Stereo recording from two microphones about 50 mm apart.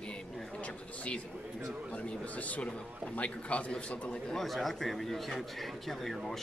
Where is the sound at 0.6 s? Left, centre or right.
Left.